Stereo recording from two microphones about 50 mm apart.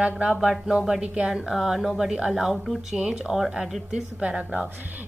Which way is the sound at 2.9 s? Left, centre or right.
Centre.